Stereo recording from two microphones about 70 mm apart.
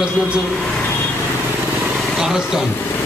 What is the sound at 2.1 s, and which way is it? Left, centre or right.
Speech, centre.